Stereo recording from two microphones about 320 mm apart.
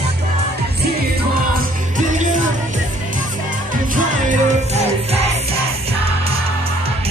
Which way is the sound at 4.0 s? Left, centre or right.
Right.